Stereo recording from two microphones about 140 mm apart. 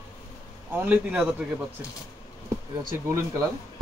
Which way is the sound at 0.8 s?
10° right (ahead or behind).